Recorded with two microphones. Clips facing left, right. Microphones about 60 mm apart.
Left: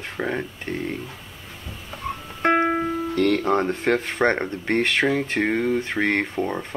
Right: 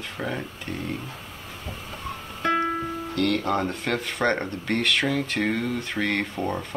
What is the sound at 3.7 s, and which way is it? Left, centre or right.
Speech, left.